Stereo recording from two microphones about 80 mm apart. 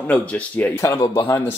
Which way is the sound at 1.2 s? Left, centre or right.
Left.